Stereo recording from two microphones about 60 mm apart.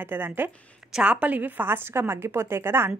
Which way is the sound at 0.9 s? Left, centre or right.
Centre.